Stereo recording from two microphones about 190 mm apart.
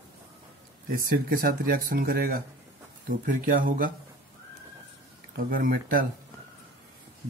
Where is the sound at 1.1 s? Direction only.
50° right (ahead or behind).